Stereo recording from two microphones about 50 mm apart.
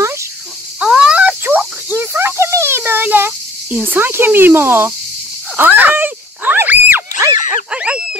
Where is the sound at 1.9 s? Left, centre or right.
Right.